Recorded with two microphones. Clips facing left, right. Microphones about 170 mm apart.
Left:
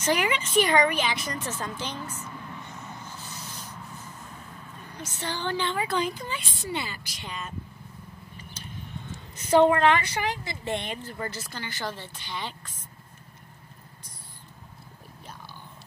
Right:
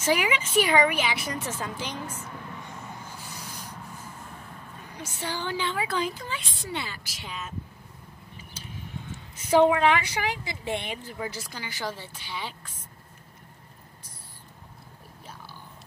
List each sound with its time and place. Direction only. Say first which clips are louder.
0.0 s a woman's voice: even; 10° right (ahead or behind)
3.0 s a sound: even; 10° right (ahead or behind)
4.9 s a woman's voice: even; 10° right (ahead or behind)
9.5 s a woman's voice: left 1 dB; 5° right (ahead or behind)